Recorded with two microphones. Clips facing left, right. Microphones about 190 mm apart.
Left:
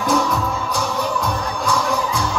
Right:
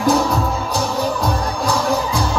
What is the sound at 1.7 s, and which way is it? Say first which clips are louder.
Music: right 2 dB; 35° right (ahead or behind).